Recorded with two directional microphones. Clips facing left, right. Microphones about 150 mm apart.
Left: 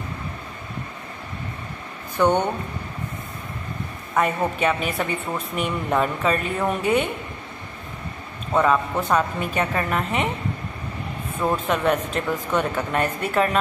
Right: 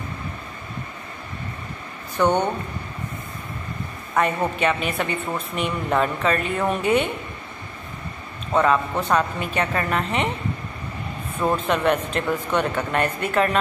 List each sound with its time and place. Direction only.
2.2 s speech: 10° left (ahead or behind)
4.1 s speech: 5° left (ahead or behind)
8.5 s speech: 5° left (ahead or behind)
11.4 s speech: centre (ahead or behind)